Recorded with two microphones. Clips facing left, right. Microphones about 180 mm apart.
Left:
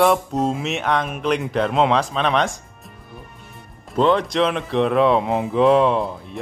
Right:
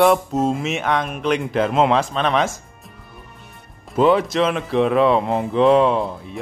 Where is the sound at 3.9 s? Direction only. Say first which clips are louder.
Right 2 dB; 5° right (ahead or behind).